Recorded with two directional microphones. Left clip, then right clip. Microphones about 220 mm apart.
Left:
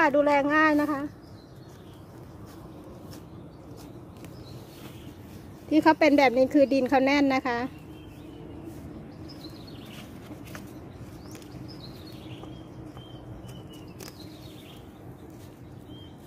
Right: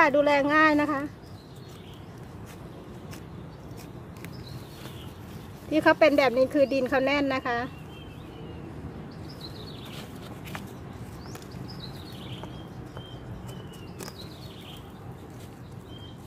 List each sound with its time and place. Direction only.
0.0 s speech: 5° left (ahead or behind)
5.7 s a woman's voice: 20° left (ahead or behind)